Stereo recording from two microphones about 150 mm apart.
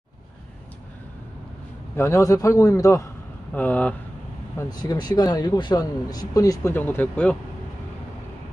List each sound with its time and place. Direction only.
2.0 s speech: 20° left (ahead or behind)
4.6 s speech: 25° left (ahead or behind); by 7.3 s 10° left (ahead or behind)